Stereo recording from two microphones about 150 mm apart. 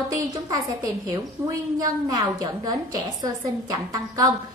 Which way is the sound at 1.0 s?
25° right (ahead or behind).